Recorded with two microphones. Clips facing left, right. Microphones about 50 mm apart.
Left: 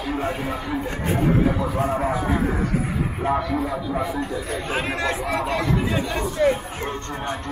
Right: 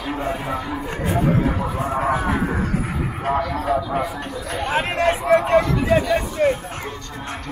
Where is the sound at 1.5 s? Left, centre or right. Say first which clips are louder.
Even; right.